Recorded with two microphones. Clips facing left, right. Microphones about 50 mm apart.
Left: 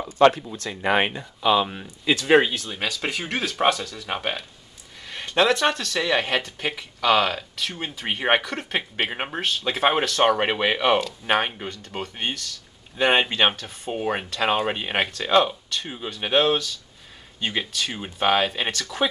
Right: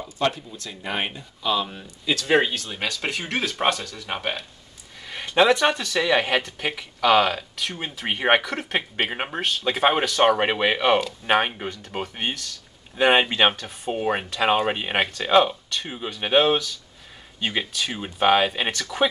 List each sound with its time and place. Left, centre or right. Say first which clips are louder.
0.3 s speech: left 5 dB; left
1.4 s speech: left 4 dB; left
2.3 s speech: left 2 dB; centre